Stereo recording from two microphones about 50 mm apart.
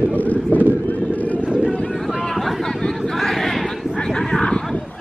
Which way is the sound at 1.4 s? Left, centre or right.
Right.